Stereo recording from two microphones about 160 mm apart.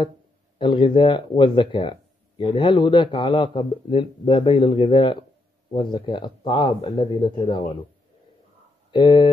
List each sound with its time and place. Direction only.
0.6 s speech: 30° left (ahead or behind)
8.9 s speech: 30° left (ahead or behind)